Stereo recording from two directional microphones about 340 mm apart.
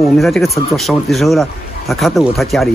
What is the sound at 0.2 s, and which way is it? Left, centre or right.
Speech, centre.